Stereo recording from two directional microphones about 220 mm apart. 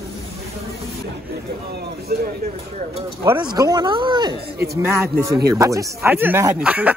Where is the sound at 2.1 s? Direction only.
45° right (ahead or behind).